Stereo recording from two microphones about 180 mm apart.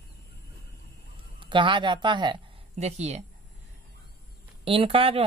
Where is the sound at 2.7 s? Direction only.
40° right (ahead or behind).